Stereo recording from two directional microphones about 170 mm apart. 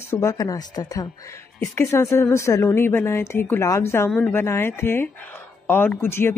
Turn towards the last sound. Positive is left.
turn(degrees=15)  # may be behind; listen again after turning